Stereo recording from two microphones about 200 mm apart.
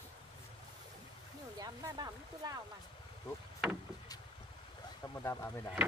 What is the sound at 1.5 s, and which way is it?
Speech, 20° right (ahead or behind).